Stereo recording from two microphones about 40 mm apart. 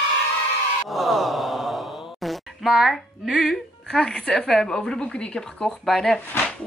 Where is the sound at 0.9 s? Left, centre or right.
Centre.